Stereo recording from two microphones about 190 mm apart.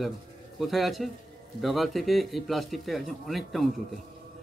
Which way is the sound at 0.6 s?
Centre (ahead or behind).